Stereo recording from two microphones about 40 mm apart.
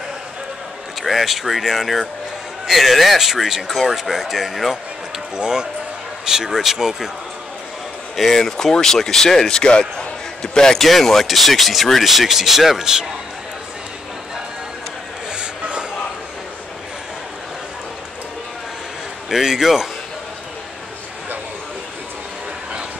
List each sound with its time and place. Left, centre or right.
1.0 s speech: centre
5.3 s speech: centre
8.2 s speech: centre
10.8 s speech: centre
15.3 s a sound: right
19.2 s a man's voice: centre